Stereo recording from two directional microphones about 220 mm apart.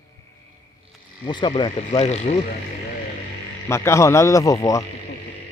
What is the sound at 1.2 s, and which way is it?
Speech, 20° left (ahead or behind).